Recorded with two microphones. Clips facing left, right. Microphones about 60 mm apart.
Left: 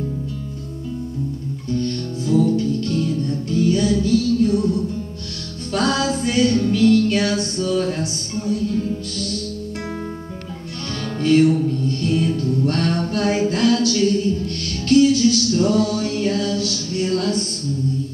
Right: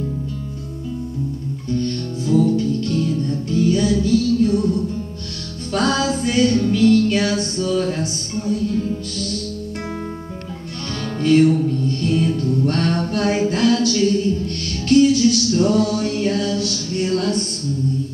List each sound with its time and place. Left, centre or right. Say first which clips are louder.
1.7 s music: right 1 dB; centre
11.1 s music: right 1 dB; centre